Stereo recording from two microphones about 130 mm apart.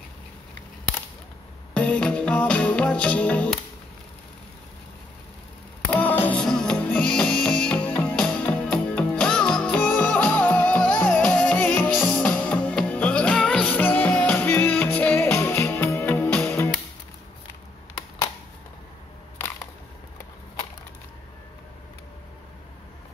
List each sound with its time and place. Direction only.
1.7 s music: 10° left (ahead or behind)
5.9 s music: 15° left (ahead or behind)